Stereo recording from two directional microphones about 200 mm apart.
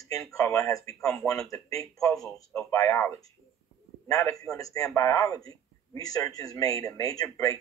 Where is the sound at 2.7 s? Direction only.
15° left (ahead or behind).